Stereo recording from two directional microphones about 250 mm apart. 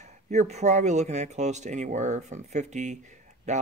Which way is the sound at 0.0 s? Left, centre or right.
Right.